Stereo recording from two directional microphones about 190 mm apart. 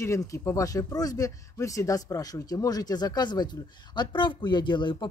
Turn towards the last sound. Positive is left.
turn(degrees=25)  # may be behind; listen again after turning